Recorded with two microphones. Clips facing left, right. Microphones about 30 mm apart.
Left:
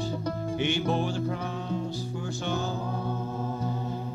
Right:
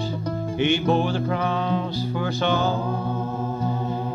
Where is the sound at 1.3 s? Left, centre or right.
Right.